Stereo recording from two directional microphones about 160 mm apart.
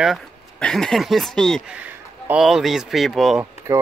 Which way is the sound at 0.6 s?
5° left (ahead or behind).